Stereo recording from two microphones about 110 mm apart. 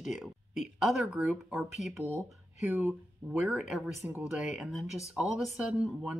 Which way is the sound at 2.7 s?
15° right (ahead or behind).